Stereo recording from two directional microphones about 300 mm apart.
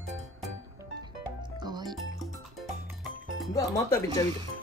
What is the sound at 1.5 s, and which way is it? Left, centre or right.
Music, centre.